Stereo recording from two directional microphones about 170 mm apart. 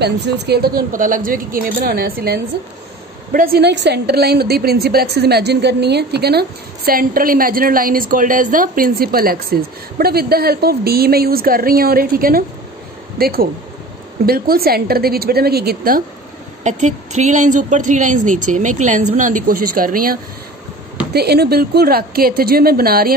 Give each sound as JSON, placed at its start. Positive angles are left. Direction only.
{"t": 0.0, "sound": "a woman's voice", "side_deg": -75}
{"t": 16.6, "sound": "a woman's voice", "side_deg": -45}
{"t": 21.1, "sound": "a woman's voice", "side_deg": -70}